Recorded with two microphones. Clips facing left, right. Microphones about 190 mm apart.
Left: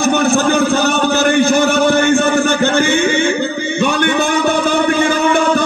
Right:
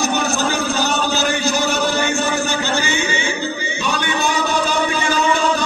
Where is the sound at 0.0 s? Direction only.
55° left (ahead or behind).